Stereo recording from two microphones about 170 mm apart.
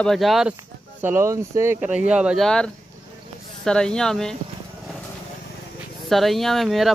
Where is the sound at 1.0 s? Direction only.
15° right (ahead or behind); by 4.3 s 5° left (ahead or behind).